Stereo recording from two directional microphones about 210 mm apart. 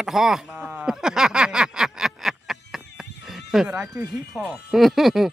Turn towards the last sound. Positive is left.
turn(degrees=0)  # may be behind; listen again after turning